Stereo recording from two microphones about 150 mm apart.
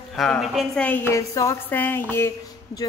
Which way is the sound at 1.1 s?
20° left (ahead or behind).